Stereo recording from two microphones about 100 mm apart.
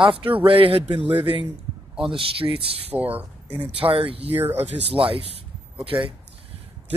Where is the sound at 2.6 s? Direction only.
75° right (ahead or behind).